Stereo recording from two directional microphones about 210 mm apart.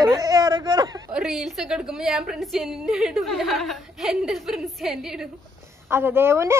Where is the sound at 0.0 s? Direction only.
15° right (ahead or behind).